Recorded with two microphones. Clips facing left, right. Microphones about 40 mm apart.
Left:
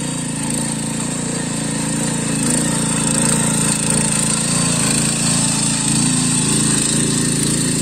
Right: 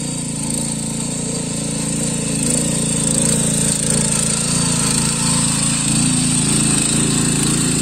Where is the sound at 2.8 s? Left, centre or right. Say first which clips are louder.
Left 1 dB; left.